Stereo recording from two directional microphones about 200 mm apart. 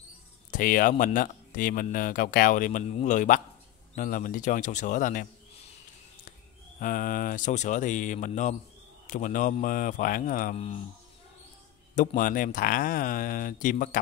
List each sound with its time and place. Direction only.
0.5 s speech: 45° left (ahead or behind)
6.8 s speech: 45° left (ahead or behind)
11.9 s speech: 40° left (ahead or behind)